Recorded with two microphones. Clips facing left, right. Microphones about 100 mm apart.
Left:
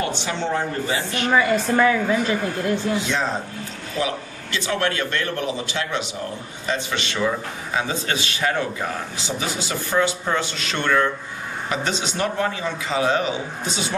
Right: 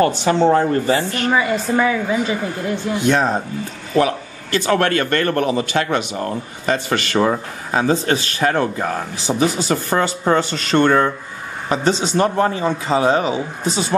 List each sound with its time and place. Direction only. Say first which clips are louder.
0.0 s a man's voice: right 10 dB; 45° right (ahead or behind)
1.3 s a woman's voice: even; 5° right (ahead or behind)
3.0 s a man's voice: right 7 dB; 55° right (ahead or behind); by 13.3 s 35° right (ahead or behind)